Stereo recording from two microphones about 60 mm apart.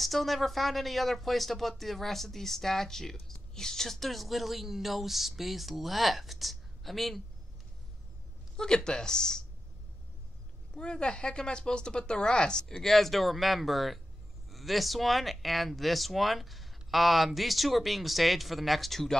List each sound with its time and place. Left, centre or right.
0.0 s speech: centre
8.5 s a woman's voice: centre
10.8 s a woman's voice: centre